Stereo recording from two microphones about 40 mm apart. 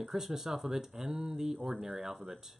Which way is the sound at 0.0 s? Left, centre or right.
Centre.